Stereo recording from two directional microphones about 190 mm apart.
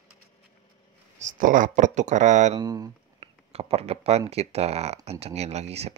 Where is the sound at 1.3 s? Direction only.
45° right (ahead or behind).